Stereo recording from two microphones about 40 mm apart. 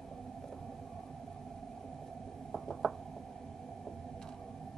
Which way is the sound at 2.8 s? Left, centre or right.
Left.